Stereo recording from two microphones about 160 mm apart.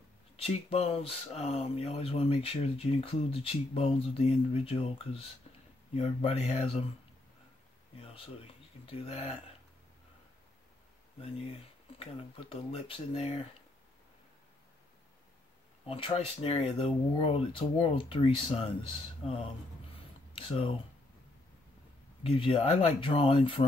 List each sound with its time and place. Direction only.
0.4 s speech: 40° left (ahead or behind)
8.0 s speech: 35° left (ahead or behind)
12.0 s speech: 35° left (ahead or behind)
15.9 s speech: 35° left (ahead or behind)
20.0 s a sound: 35° left (ahead or behind)
22.3 s speech: 30° left (ahead or behind)